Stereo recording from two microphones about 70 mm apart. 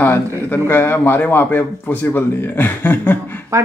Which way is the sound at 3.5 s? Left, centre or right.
Right.